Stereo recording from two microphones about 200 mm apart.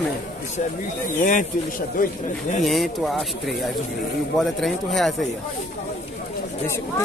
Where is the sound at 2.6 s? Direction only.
Centre (ahead or behind).